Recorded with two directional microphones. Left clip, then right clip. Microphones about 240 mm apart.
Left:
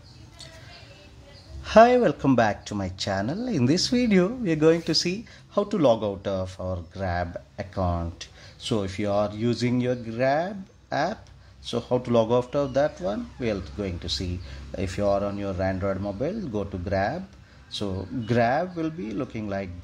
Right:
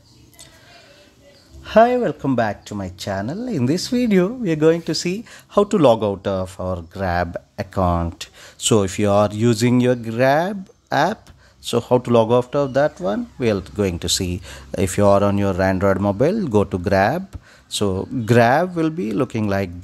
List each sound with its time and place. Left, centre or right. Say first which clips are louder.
1.6 s speech: right 2 dB; centre; by 19.7 s right